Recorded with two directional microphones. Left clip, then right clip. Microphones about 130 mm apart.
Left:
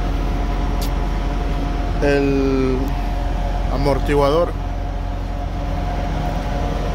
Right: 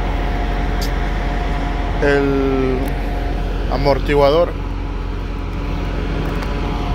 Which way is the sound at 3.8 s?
30° left (ahead or behind).